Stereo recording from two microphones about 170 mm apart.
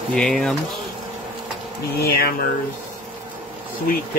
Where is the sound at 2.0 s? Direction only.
65° left (ahead or behind).